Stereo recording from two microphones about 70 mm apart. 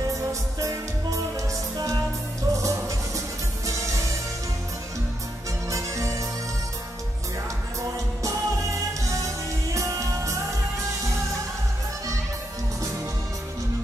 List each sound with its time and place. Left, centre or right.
0.0 s music: right
5.7 s music: right
8.2 s music: right